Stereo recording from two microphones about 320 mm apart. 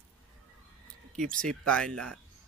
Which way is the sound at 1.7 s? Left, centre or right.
Centre.